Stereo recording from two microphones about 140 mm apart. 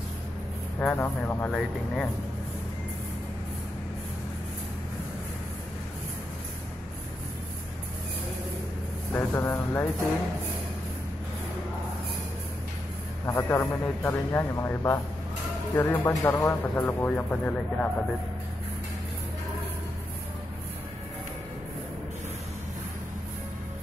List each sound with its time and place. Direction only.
0.7 s speech: 15° left (ahead or behind)
9.1 s speech: 15° left (ahead or behind)
13.2 s a man's voice: 20° left (ahead or behind)